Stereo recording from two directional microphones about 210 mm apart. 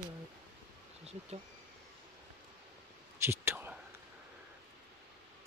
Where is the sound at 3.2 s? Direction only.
10° right (ahead or behind).